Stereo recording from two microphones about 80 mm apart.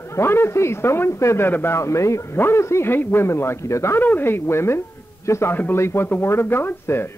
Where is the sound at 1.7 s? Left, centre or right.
Left.